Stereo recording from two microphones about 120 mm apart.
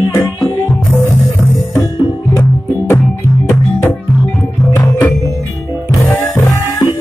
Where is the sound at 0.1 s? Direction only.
20° left (ahead or behind).